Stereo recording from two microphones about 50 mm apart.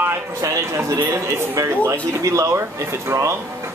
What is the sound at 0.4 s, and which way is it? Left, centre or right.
Speech, right.